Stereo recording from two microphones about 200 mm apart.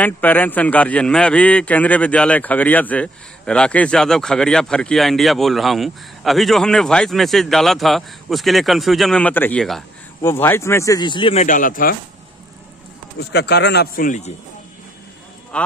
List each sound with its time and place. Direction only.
0.0 s a man's voice: 10° left (ahead or behind); by 11.4 s 25° left (ahead or behind)
11.4 s speech: 40° left (ahead or behind)
13.3 s speech: 55° left (ahead or behind)
15.5 s a man's voice: 5° left (ahead or behind)